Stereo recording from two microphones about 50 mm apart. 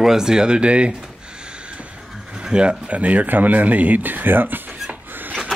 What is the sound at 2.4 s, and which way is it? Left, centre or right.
Speech, centre.